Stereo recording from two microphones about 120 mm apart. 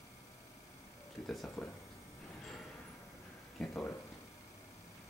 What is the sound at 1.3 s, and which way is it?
Speech, centre (ahead or behind).